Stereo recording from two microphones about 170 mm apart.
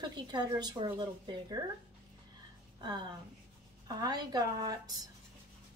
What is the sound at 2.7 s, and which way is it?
A woman's voice, 25° right (ahead or behind).